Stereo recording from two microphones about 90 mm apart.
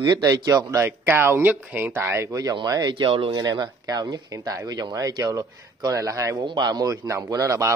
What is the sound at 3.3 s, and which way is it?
Speech, 55° right (ahead or behind).